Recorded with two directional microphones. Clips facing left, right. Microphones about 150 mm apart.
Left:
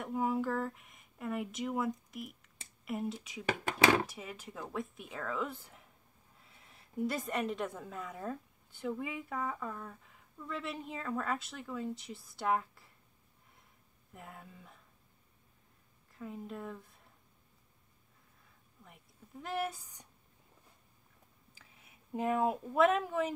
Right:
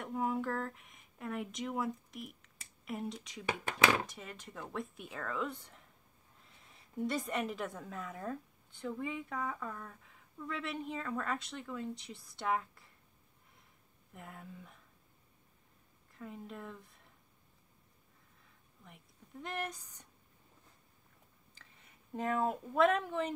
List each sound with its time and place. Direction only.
0.0 s a woman's voice: centre (ahead or behind)
2.0 s a sound: centre (ahead or behind)
2.8 s a woman's voice: centre (ahead or behind)
14.1 s a woman's voice: centre (ahead or behind)
16.1 s speech: centre (ahead or behind)
19.4 s speech: 5° left (ahead or behind)
21.5 s speech: 10° left (ahead or behind)